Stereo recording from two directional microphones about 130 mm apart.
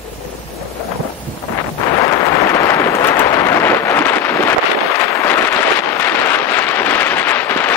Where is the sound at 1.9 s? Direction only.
25° left (ahead or behind).